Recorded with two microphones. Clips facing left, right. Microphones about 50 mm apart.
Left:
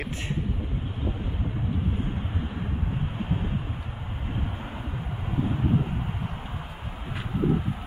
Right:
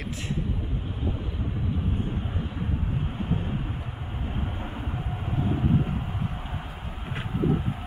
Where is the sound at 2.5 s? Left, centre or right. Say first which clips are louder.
Right 1 dB; centre.